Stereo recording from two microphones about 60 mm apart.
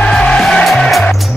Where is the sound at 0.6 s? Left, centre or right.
Centre.